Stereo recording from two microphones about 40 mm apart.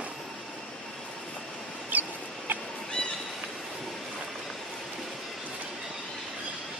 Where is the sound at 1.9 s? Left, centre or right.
Right.